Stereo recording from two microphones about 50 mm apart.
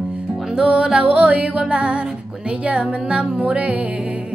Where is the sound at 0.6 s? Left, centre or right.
Centre.